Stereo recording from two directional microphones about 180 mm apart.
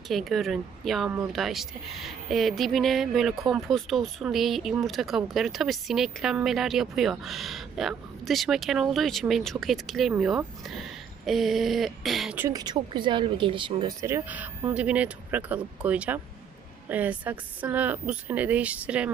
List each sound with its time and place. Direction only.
0.1 s speech: centre (ahead or behind)
12.4 s speech: 20° right (ahead or behind)
14.0 s speech: 10° right (ahead or behind)